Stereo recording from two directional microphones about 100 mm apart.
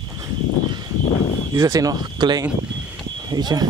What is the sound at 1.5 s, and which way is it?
Speech, 35° right (ahead or behind).